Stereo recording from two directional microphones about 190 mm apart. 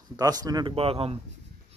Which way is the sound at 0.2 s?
20° right (ahead or behind).